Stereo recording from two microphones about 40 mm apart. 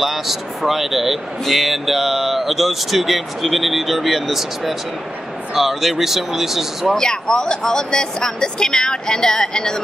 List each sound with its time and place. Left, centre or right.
0.0 s speech: centre
7.0 s speech: centre